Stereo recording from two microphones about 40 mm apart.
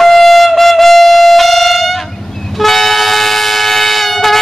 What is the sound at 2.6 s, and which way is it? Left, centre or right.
Train, centre.